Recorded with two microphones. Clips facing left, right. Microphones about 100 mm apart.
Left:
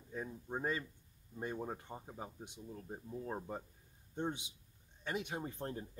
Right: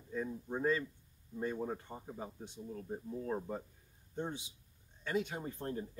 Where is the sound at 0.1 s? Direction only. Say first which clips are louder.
Right 4 dB; 20° left (ahead or behind).